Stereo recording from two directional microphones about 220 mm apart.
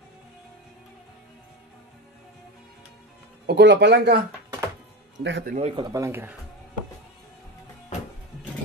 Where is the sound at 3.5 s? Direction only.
50° right (ahead or behind).